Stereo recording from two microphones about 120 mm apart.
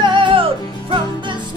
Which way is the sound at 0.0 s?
40° right (ahead or behind).